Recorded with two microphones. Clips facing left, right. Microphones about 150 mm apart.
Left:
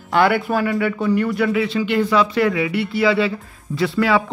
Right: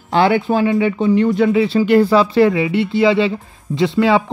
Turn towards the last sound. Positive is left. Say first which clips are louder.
# right 4 dB
turn(degrees=-25)  # may be behind; listen again after turning